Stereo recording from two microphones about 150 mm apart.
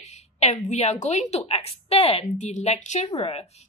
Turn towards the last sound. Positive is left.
turn(degrees=40)  # may be behind; listen again after turning